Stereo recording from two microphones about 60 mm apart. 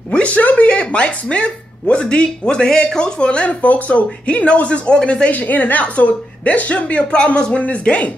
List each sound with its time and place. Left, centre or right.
0.1 s a woman's voice: left